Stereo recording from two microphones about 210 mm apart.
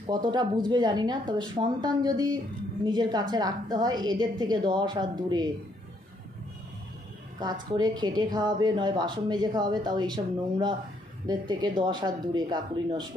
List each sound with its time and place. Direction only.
0.0 s a woman's voice: 20° right (ahead or behind)
7.4 s a woman's voice: 20° right (ahead or behind)